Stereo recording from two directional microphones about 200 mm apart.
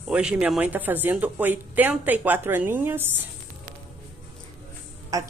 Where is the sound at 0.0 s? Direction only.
5° right (ahead or behind).